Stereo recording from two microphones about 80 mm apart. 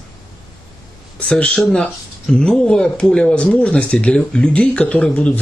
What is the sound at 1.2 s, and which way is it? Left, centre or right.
Speech, centre.